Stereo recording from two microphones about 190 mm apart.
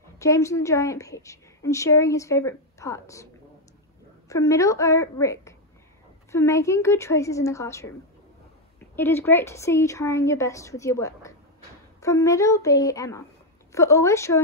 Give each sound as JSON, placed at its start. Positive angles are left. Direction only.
{"t": 0.2, "sound": "a woman's voice", "side_deg": 15}
{"t": 4.3, "sound": "a woman's voice", "side_deg": 15}
{"t": 8.9, "sound": "a woman's voice", "side_deg": 10}